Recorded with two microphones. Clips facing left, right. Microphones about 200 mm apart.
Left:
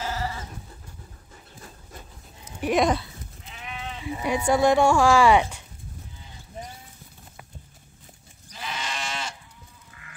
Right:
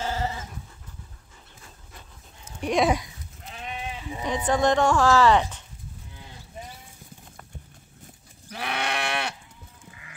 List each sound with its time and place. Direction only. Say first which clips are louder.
0.0 s goat: right 2 dB; 25° right (ahead or behind)
2.6 s speech: left 1 dB; 5° left (ahead or behind)
3.6 s sheep: right 2 dB; 15° right (ahead or behind)
4.0 s speech: left 4 dB; 10° left (ahead or behind)
8.5 s livestock: right 5 dB; 65° right (ahead or behind)